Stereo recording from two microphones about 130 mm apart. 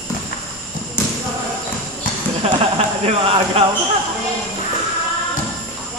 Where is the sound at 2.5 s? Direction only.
45° right (ahead or behind).